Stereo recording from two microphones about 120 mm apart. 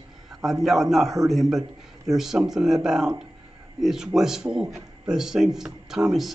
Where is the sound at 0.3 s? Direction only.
Centre (ahead or behind).